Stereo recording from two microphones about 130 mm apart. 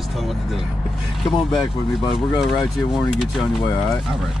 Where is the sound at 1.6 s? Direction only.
40° left (ahead or behind).